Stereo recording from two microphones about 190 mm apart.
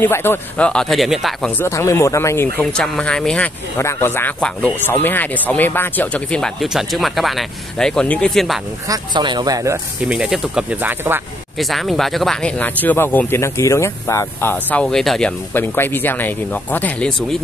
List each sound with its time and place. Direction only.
0.0 s speech: 10° left (ahead or behind)
1.6 s speech: 15° left (ahead or behind)
8.8 s speech: 20° right (ahead or behind)
10.0 s speech: 5° right (ahead or behind)
11.5 s speech: centre (ahead or behind)